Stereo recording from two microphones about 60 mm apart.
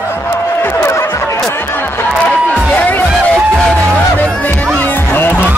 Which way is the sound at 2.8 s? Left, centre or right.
Left.